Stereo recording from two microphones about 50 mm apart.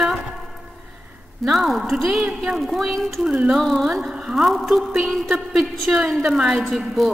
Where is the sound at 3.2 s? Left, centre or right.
Centre.